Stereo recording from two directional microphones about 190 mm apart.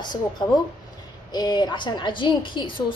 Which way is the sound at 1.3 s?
20° left (ahead or behind).